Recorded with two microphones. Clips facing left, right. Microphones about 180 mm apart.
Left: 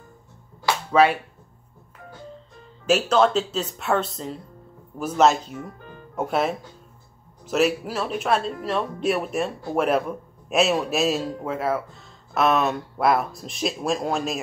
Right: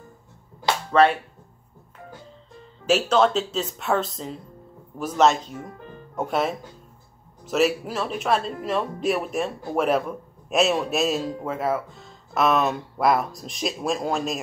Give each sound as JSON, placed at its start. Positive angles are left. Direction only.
{"t": 2.9, "sound": "speech", "side_deg": 0}